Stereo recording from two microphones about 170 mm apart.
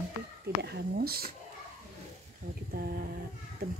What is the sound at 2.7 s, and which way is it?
Speech, 60° right (ahead or behind).